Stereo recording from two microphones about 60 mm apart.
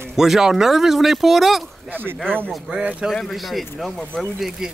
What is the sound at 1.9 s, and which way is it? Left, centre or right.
Speech, right.